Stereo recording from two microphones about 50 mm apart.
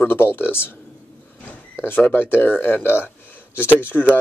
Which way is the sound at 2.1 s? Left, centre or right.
Left.